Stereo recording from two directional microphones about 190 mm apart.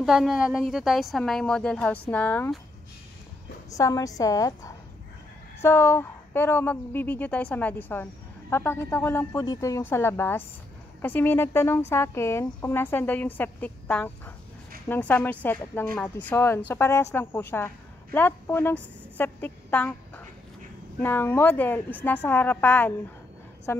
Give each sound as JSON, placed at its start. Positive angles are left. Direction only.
{"t": 0.0, "sound": "a woman's voice", "side_deg": 0}
{"t": 3.7, "sound": "a woman's voice", "side_deg": 20}